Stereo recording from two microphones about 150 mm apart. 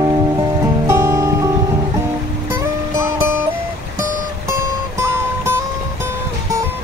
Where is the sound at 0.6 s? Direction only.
20° right (ahead or behind).